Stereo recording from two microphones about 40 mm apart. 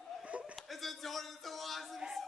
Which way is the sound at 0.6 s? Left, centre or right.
Centre.